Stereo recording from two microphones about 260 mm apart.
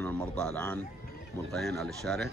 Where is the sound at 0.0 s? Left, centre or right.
Centre.